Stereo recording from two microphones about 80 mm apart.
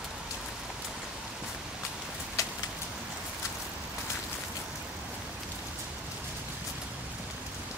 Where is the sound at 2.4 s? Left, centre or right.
Left.